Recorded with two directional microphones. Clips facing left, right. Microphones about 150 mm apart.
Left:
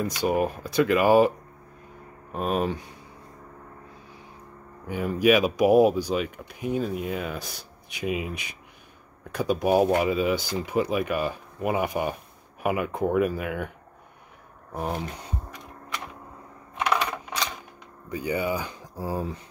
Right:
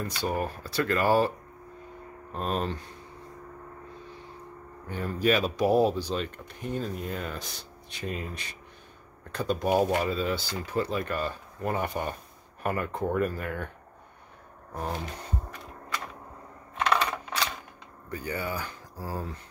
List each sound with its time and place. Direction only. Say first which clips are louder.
0.0 s speech: left 6 dB; 15° left (ahead or behind)
2.3 s speech: left 4 dB; 10° left (ahead or behind)
4.8 s speech: left 5 dB; 10° left (ahead or behind)
14.7 s speech: left 3 dB; 10° left (ahead or behind)
16.7 s coin: left 1 dB; 10° left (ahead or behind)
18.1 s speech: left 6 dB; 15° left (ahead or behind)